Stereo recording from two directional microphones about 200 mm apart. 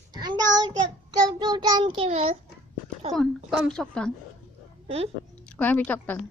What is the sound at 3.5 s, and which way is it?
Speech, centre (ahead or behind).